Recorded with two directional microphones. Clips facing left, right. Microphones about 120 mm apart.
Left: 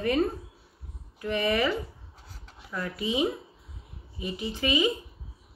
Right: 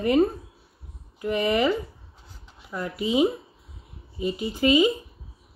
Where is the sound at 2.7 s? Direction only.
20° right (ahead or behind).